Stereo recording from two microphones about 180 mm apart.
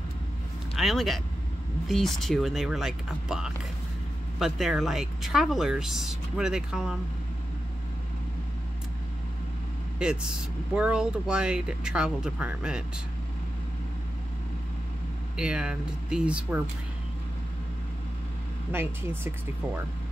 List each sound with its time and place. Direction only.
0.7 s speech: centre (ahead or behind)
9.9 s speech: 5° right (ahead or behind)
15.3 s speech: 5° right (ahead or behind)
18.7 s speech: 10° right (ahead or behind)